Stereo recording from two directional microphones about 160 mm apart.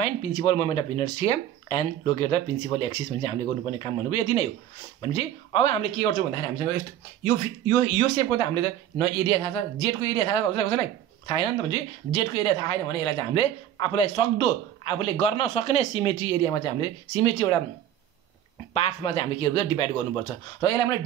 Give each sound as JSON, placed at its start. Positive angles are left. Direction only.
{"t": 0.0, "sound": "speech", "side_deg": 40}
{"t": 5.0, "sound": "speech", "side_deg": 35}
{"t": 18.7, "sound": "speech", "side_deg": 40}